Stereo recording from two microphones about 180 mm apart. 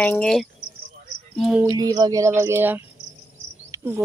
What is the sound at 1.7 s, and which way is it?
Speech, 20° right (ahead or behind).